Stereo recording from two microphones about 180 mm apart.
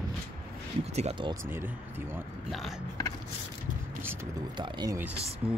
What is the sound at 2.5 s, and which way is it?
Speech, centre (ahead or behind).